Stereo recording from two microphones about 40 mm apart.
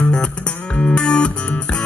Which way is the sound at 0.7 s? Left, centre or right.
Left.